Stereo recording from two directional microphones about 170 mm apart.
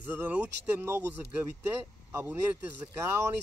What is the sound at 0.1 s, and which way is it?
Speech, 10° right (ahead or behind).